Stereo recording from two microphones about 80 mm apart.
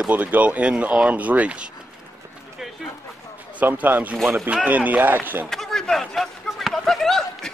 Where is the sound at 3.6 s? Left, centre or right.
Right.